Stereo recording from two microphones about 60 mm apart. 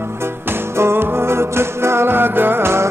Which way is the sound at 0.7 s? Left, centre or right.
Right.